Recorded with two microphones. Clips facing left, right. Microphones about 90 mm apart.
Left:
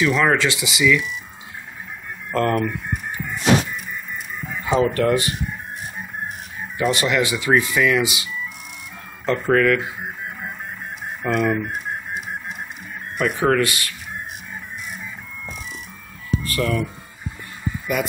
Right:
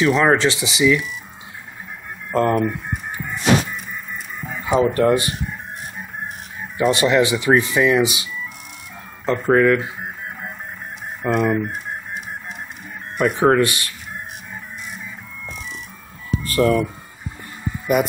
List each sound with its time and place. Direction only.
0.0 s speech: 25° right (ahead or behind)
2.3 s speech: 20° right (ahead or behind)
4.7 s speech: 25° right (ahead or behind)
6.8 s speech: 25° right (ahead or behind)
11.2 s speech: 20° right (ahead or behind)
13.2 s speech: 25° right (ahead or behind)
16.4 s speech: 30° right (ahead or behind)